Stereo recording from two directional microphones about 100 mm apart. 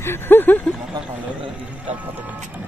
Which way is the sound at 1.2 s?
15° right (ahead or behind).